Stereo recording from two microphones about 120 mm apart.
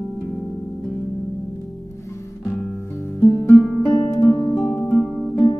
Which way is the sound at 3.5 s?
Centre (ahead or behind).